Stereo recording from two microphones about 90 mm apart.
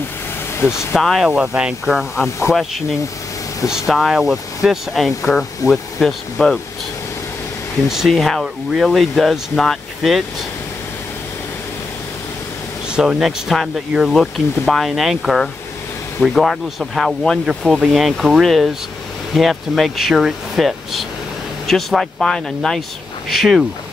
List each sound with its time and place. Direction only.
0.6 s speech: 30° left (ahead or behind)
0.9 s speech: centre (ahead or behind)
3.6 s speech: 5° right (ahead or behind)
7.9 s speech: centre (ahead or behind)
12.9 s speech: 5° right (ahead or behind)